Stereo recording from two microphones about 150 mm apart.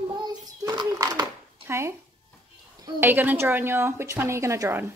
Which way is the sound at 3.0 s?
15° right (ahead or behind).